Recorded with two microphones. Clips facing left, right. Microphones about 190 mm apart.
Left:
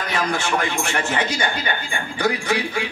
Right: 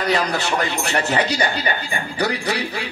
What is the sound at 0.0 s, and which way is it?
Speech, 35° right (ahead or behind).